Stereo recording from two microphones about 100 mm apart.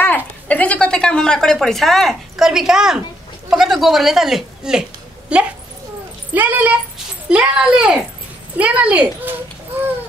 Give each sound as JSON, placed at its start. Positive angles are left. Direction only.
{"t": 0.5, "sound": "speech", "side_deg": 15}